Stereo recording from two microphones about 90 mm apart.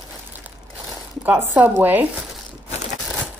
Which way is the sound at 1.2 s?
25° right (ahead or behind).